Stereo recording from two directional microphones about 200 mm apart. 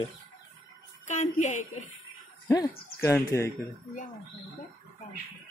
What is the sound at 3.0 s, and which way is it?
Speech, 10° left (ahead or behind).